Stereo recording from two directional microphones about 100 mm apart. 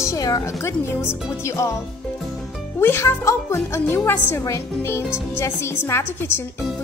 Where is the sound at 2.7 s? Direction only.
25° left (ahead or behind).